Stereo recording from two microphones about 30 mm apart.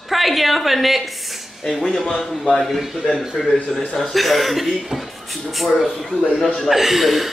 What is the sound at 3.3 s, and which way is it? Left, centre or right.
Speech, centre.